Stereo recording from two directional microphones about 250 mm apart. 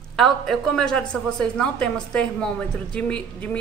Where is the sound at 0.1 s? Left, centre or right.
Centre.